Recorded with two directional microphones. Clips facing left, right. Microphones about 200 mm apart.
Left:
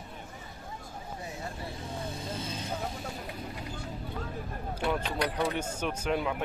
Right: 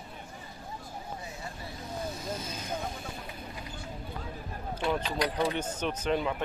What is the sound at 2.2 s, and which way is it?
Vehicle, 30° left (ahead or behind).